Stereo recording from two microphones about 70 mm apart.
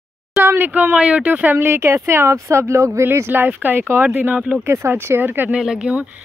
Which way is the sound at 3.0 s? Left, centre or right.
Right.